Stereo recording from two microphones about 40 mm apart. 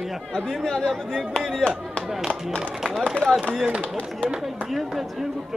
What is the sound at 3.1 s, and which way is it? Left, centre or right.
Speech, centre.